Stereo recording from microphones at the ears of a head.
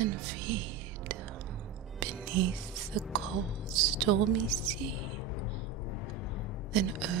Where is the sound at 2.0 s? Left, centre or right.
Right.